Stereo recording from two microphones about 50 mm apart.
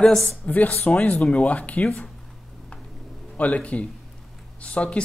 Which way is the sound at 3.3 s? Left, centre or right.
Left.